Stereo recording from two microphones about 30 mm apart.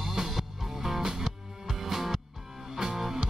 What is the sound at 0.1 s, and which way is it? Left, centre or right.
Music, centre.